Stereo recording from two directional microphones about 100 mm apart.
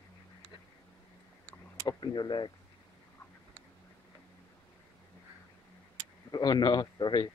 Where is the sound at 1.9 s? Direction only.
45° left (ahead or behind).